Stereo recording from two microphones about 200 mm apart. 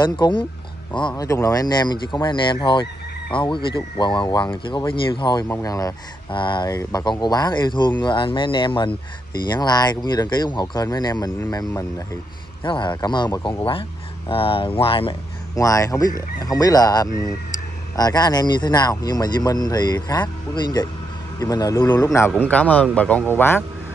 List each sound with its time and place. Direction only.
0.9 s speech: 20° left (ahead or behind)